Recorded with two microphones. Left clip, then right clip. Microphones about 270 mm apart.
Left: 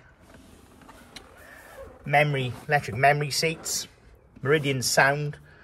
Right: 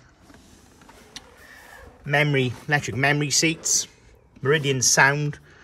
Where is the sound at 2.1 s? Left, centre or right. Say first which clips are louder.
Right 1 dB; right.